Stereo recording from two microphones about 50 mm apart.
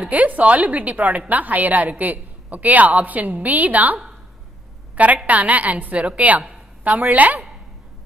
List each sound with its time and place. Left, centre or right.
0.1 s a woman's voice: right